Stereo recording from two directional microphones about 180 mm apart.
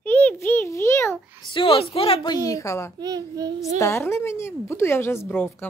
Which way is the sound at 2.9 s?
20° right (ahead or behind).